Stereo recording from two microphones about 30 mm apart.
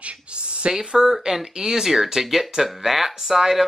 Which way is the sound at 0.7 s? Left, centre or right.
Right.